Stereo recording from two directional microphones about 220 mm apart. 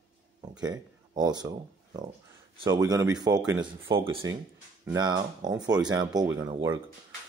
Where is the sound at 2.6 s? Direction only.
15° right (ahead or behind).